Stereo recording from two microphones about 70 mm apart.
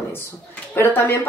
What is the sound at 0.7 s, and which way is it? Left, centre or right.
Speech, left.